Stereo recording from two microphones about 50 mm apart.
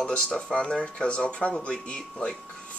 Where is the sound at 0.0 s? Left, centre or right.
Centre.